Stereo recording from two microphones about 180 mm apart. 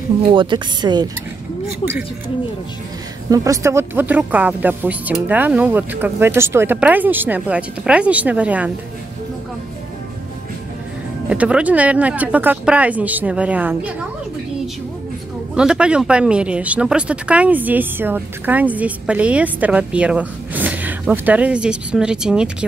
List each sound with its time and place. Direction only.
0.3 s speech: 25° right (ahead or behind)
3.3 s speech: 15° right (ahead or behind)
11.2 s speech: 5° right (ahead or behind)
15.5 s speech: 5° right (ahead or behind)